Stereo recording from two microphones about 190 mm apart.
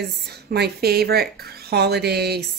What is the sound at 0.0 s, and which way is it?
Speech, 60° right (ahead or behind).